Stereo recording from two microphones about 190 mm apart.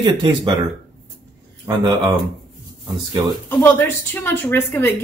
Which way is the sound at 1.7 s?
20° right (ahead or behind).